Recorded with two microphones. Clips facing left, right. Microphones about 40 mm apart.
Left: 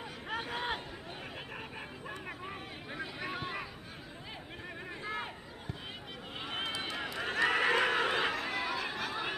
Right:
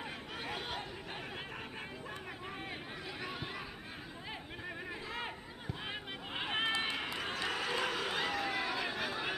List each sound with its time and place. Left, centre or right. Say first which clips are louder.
0.4 s chatter: left 5 dB; left
3.2 s a sound: left 3 dB; centre
6.3 s run: right 3 dB; right
7.3 s chatter: left 10 dB; left
8.3 s chatter: left 1 dB; centre